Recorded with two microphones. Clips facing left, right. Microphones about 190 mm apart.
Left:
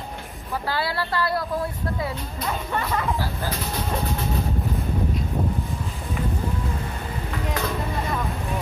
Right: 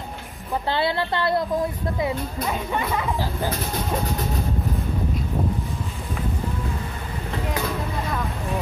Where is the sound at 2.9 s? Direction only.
Centre (ahead or behind).